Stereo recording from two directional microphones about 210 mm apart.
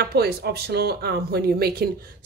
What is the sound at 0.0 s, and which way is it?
Speech, 50° right (ahead or behind).